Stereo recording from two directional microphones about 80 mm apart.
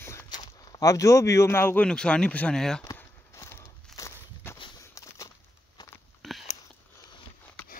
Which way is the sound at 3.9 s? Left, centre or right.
Left.